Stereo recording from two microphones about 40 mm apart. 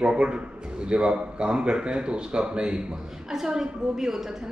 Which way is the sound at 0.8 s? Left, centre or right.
Right.